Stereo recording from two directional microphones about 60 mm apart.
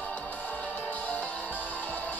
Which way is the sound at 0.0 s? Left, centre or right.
Left.